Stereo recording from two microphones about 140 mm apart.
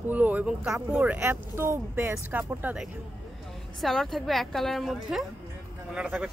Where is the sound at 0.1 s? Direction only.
10° right (ahead or behind).